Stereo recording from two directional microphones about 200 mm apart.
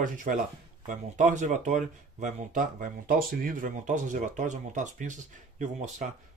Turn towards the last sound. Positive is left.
turn(degrees=-35)  # may be behind; listen again after turning